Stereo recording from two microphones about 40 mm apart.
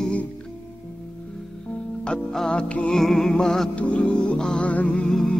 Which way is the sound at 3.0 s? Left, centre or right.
Centre.